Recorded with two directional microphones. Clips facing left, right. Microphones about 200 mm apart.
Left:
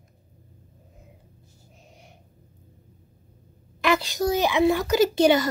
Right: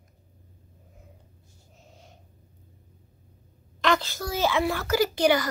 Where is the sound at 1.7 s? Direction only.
15° left (ahead or behind).